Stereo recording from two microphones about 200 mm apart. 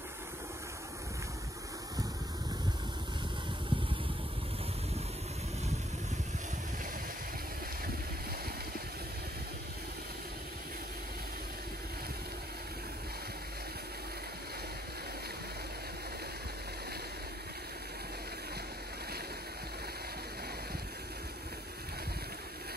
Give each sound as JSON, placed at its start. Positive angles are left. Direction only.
{"t": 3.7, "sound": "vehicle", "side_deg": -25}